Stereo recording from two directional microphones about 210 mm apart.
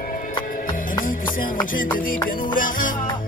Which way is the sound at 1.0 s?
40° left (ahead or behind).